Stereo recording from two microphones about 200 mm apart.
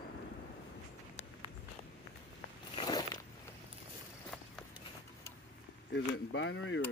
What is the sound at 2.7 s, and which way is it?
Biting, 20° left (ahead or behind).